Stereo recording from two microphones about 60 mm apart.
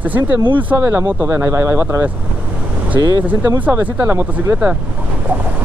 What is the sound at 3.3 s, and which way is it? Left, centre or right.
Speech, right.